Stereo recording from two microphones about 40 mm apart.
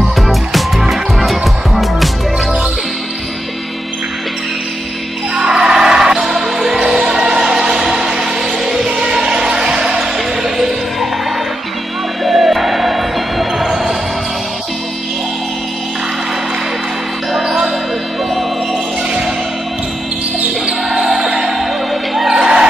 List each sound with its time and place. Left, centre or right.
0.0 s music: centre
5.4 s music: centre
12.2 s music: centre
17.3 s music: centre
21.0 s music: centre
22.3 s basketball bounce: centre